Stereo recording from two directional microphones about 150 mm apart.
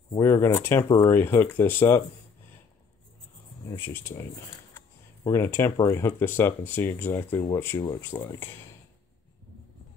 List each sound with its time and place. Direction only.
0.2 s speech: 15° left (ahead or behind)
0.8 s speech: 30° left (ahead or behind)
1.1 s speech: 15° left (ahead or behind)
3.7 s speech: 15° left (ahead or behind)
4.7 s a sound: 15° left (ahead or behind)
5.8 s speech: 20° left (ahead or behind)